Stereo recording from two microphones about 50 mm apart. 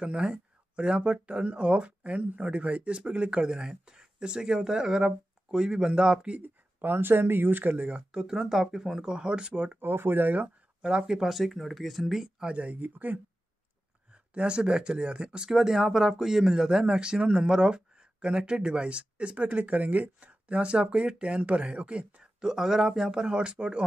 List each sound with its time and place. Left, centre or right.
0.0 s speech: centre
6.8 s speech: right
9.8 s speech: right
10.8 s speech: centre
12.4 s speech: right
14.1 s speech: right
22.4 s speech: centre